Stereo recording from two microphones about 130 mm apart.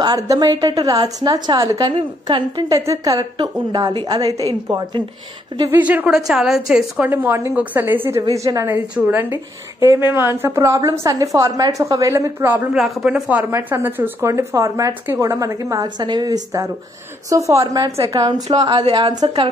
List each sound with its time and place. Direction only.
0.0 s a woman's voice: 30° right (ahead or behind)
4.3 s a woman's voice: 25° left (ahead or behind)
4.6 s a woman's voice: 30° right (ahead or behind)
5.8 s a woman's voice: 10° right (ahead or behind)
7.1 s a woman's voice: 20° right (ahead or behind)
8.2 s speech: 30° right (ahead or behind)
8.6 s a woman's voice: 15° right (ahead or behind)
12.7 s a woman's voice: centre (ahead or behind); by 19.5 s 40° right (ahead or behind)